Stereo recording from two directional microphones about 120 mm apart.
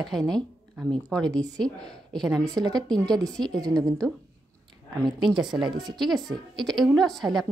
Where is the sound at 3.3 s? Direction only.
5° left (ahead or behind).